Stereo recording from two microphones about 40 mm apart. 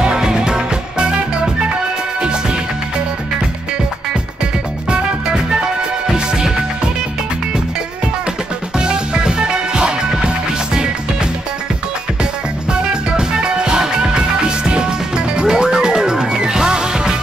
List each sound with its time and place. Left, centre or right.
0.0 s music: centre
4.8 s music: right
6.1 s music: centre
8.7 s music: right
13.3 s music: right